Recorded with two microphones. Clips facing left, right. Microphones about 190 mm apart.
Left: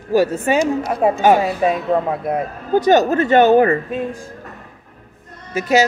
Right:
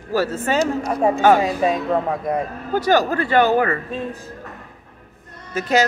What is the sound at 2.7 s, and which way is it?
Speech, 20° left (ahead or behind).